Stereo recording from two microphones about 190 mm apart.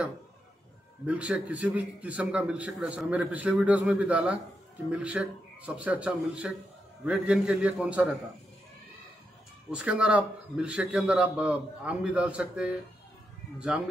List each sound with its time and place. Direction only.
1.0 s a man's voice: 5° right (ahead or behind)
9.7 s a man's voice: 5° right (ahead or behind)